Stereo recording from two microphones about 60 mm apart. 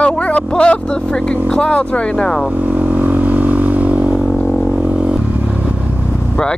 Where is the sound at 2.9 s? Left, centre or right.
Right.